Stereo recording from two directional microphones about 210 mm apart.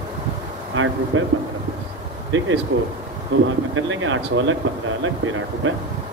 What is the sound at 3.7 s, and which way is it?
Speech, 70° right (ahead or behind).